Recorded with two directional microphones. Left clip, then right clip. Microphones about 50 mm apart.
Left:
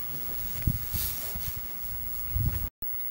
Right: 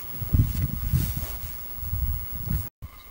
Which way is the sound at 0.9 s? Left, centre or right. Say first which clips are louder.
Right 5 dB; left.